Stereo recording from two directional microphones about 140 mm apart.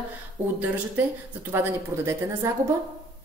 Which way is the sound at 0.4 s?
15° right (ahead or behind).